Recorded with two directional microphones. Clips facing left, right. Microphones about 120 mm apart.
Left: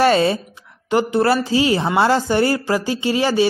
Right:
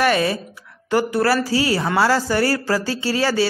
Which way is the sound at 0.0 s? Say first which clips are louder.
Left 3 dB; 30° left (ahead or behind).